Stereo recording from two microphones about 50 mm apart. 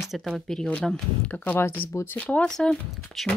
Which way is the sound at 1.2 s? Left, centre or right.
Left.